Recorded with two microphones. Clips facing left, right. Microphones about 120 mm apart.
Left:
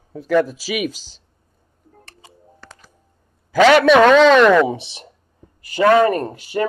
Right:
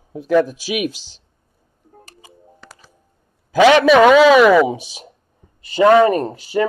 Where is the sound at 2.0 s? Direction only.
5° right (ahead or behind).